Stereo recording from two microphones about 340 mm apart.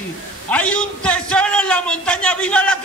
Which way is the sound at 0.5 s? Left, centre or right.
Centre.